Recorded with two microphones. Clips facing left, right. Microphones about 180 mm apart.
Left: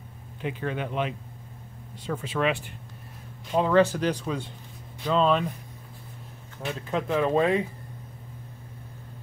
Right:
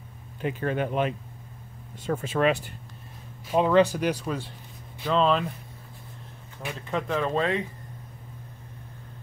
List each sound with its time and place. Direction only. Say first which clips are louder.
0.4 s speech: right 3 dB; 45° right (ahead or behind)
3.5 s speech: right 1 dB; 15° right (ahead or behind); by 5.4 s 5° left (ahead or behind)
6.6 s speech: left 1 dB; centre (ahead or behind)